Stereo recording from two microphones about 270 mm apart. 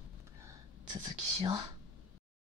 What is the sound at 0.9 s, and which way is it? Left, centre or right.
Speech, centre.